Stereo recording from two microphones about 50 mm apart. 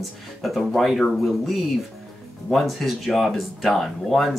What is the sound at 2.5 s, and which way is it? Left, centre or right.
Speech, centre.